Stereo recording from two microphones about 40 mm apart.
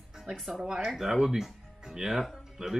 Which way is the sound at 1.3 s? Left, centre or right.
Centre.